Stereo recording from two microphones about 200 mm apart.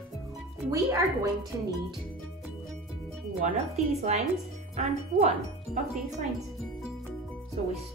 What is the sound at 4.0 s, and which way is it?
Speech, 35° right (ahead or behind).